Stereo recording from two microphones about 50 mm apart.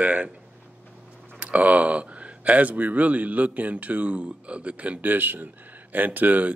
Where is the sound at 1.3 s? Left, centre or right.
Right.